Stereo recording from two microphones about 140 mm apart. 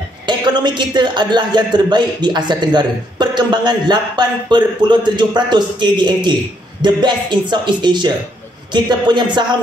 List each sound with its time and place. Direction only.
0.3 s a man's voice: 30° right (ahead or behind)